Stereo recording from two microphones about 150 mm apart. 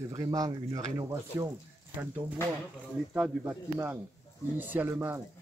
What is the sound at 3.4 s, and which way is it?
Speech, 15° right (ahead or behind).